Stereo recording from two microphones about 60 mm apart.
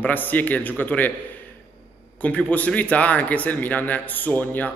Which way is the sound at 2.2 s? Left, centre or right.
Left.